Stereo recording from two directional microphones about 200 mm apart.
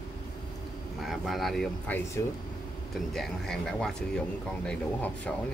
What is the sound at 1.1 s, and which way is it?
Speech, centre (ahead or behind).